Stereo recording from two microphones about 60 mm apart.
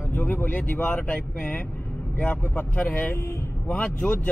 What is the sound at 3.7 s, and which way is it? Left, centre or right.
Speech, left.